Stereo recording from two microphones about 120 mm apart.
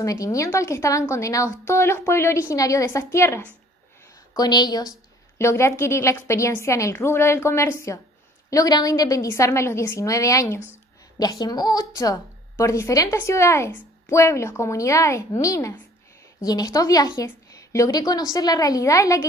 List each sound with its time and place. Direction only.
0.0 s a woman's voice: 30° left (ahead or behind)
4.3 s a woman's voice: 35° left (ahead or behind)
5.4 s a woman's voice: 20° left (ahead or behind)